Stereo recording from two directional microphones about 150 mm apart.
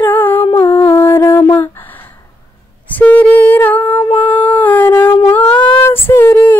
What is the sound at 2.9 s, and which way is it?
Music, 10° left (ahead or behind).